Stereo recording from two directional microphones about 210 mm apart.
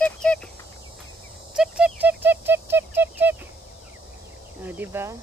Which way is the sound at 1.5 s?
5° right (ahead or behind).